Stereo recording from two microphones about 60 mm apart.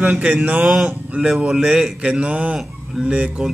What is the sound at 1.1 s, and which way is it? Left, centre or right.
Speech, right.